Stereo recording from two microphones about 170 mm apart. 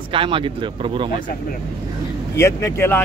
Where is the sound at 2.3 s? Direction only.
15° left (ahead or behind).